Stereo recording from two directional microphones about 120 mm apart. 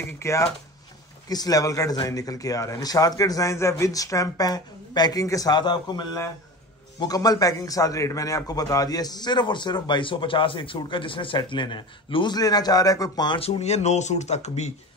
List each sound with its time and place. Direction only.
0.2 s a man's voice: 25° left (ahead or behind)
13.4 s speech: 65° left (ahead or behind)